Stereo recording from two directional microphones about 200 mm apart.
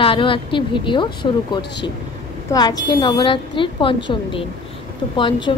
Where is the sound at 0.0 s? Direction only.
25° left (ahead or behind).